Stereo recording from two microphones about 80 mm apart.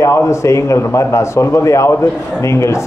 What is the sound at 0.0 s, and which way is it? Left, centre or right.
Speech, left.